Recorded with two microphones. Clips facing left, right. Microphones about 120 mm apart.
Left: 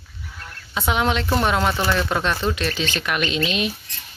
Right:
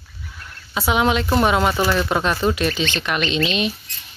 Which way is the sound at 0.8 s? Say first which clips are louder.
Right 3 dB; 5° right (ahead or behind).